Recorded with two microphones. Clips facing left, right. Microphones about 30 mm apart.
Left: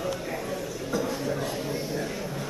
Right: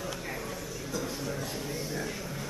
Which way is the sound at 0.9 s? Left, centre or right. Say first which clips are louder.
Left 7 dB; centre.